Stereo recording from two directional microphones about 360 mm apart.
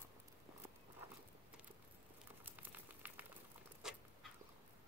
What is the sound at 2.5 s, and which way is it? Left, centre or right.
Boiling, centre.